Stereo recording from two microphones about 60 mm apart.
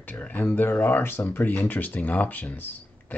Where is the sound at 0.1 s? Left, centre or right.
Left.